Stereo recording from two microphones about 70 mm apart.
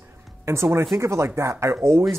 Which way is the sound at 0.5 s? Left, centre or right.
Right.